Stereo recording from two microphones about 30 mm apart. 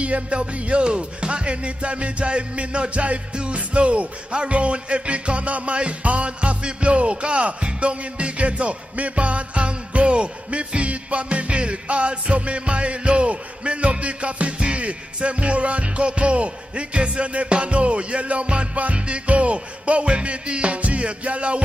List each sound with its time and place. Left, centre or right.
0.0 s music: right